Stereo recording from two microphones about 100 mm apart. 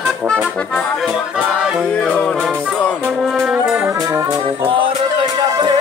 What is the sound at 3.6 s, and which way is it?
Brass instrument, 5° right (ahead or behind).